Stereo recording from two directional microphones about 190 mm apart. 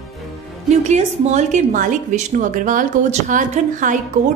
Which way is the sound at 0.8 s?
35° right (ahead or behind).